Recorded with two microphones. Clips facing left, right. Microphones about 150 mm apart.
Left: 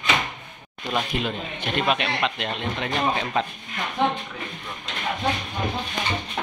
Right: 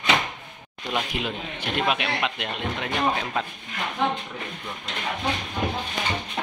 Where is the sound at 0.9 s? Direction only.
10° right (ahead or behind).